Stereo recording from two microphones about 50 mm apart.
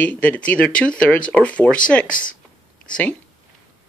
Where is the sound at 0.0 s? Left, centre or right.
Left.